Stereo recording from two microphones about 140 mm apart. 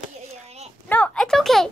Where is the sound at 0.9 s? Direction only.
5° left (ahead or behind).